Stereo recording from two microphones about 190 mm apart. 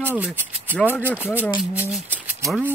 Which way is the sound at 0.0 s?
10° right (ahead or behind).